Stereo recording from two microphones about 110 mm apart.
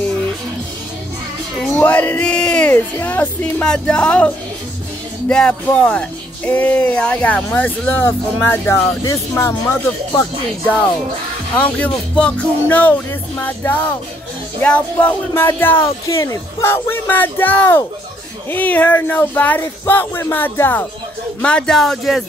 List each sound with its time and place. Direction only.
1.8 s speech: 15° left (ahead or behind)
5.3 s speech: 10° left (ahead or behind)
11.5 s speech: 15° left (ahead or behind)